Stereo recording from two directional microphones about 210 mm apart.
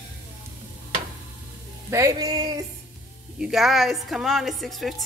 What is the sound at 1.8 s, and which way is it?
Speech, 15° right (ahead or behind).